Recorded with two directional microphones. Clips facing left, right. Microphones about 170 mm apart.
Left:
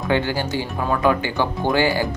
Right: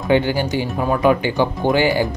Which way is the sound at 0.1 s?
15° right (ahead or behind).